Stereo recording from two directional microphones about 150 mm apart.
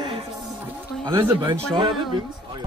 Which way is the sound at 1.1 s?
25° right (ahead or behind).